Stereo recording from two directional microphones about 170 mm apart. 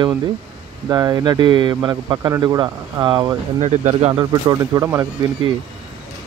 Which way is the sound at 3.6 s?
40° right (ahead or behind).